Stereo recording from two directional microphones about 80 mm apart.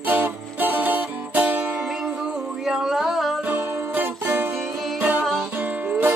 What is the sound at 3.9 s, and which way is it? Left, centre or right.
Music, right.